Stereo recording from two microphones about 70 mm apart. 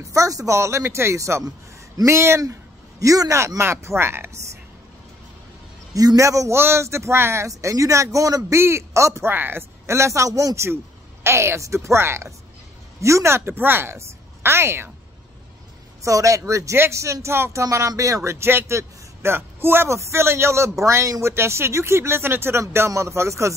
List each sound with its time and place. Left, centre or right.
0.0 s speech: right
3.0 s speech: right
5.9 s speech: right
8.5 s speech: right
9.3 s a woman's voice: right
16.0 s a man's voice: right